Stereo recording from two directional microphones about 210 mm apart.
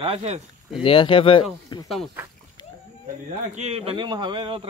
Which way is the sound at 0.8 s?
25° left (ahead or behind).